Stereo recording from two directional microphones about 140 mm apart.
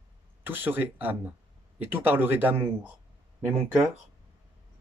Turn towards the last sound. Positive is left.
turn(degrees=-15)  # may be behind; listen again after turning